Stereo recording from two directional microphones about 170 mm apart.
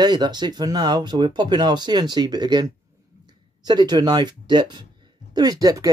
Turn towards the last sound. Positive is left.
turn(degrees=-20)  # may be behind; listen again after turning